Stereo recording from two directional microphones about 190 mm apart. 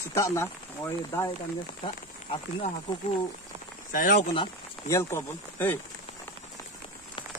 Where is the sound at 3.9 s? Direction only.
45° left (ahead or behind).